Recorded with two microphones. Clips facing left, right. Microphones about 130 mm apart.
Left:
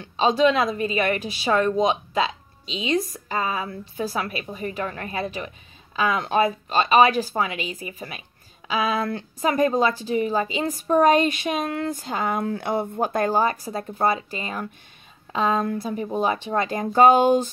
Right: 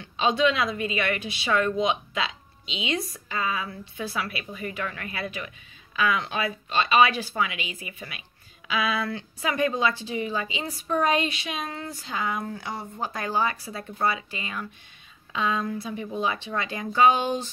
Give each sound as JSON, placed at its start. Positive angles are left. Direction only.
{"t": 0.0, "sound": "a woman's voice", "side_deg": 40}